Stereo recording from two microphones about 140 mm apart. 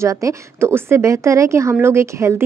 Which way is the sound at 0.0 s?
20° right (ahead or behind).